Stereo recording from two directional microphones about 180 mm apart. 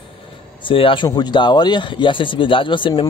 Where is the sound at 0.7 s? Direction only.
30° left (ahead or behind).